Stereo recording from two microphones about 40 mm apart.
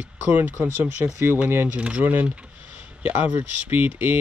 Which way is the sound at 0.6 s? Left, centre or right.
Right.